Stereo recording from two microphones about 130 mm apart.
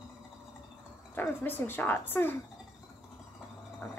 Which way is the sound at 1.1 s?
15° left (ahead or behind).